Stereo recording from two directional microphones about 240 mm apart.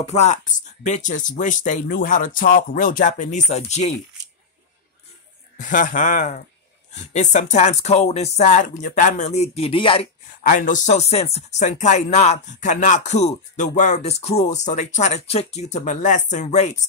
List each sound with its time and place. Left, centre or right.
0.0 s speech: left
5.6 s speech: left
10.4 s speech: left